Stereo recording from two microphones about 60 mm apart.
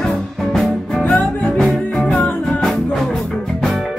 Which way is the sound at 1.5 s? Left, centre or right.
Centre.